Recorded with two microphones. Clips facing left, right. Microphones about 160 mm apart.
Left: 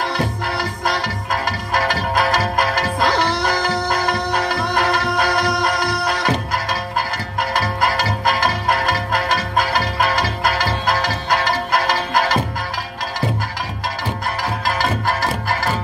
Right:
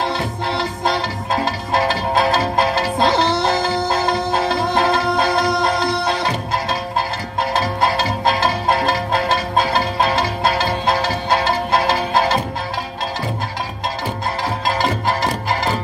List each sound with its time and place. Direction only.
0.1 s music: 25° right (ahead or behind)
14.8 s music: 20° right (ahead or behind)